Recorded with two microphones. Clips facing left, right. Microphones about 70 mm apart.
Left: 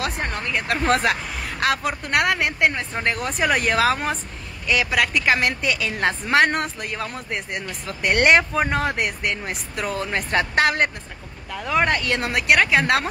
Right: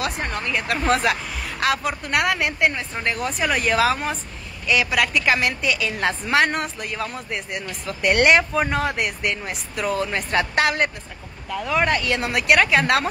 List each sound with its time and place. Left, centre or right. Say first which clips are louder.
0.0 s a woman's voice: even; left
1.6 s a woman's voice: even; left